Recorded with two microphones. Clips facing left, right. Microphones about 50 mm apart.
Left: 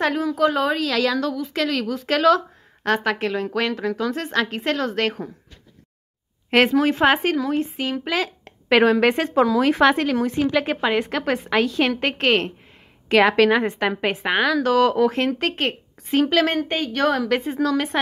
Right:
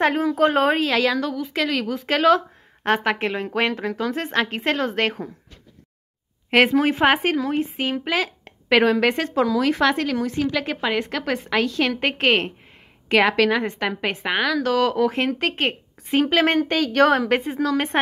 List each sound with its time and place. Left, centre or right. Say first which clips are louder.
0.0 s a woman's voice: right 1 dB; right
0.8 s speech: right 1 dB; right
1.1 s a woman's voice: left 1 dB; centre
6.5 s a woman's voice: even; centre
8.6 s a woman's voice: left 1 dB; centre
12.0 s a woman's voice: even; centre
13.1 s a woman's voice: left 2 dB; centre
13.7 s speech: left 3 dB; centre
15.1 s a woman's voice: even; centre
16.4 s a woman's voice: right 3 dB; right
16.7 s a woman's voice: right 6 dB; right
17.5 s a woman's voice: left 1 dB; centre